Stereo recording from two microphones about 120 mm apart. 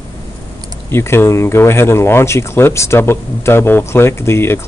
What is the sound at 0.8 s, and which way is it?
Speech, 20° left (ahead or behind).